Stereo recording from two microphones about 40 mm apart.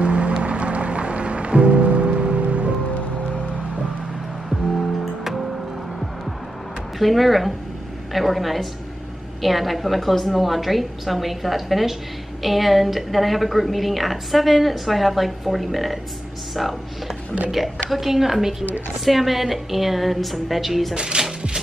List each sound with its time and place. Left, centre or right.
0.0 s music: right
4.5 s music: centre
7.0 s a woman's voice: centre
20.9 s coin: right